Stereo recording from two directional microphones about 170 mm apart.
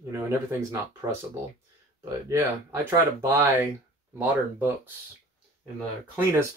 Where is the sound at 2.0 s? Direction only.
20° right (ahead or behind).